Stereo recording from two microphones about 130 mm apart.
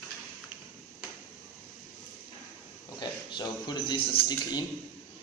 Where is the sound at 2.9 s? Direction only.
35° left (ahead or behind).